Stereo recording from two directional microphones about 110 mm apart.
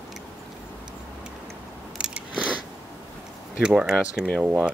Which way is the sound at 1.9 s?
10° right (ahead or behind).